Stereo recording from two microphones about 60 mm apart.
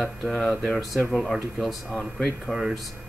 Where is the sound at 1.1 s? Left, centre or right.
Centre.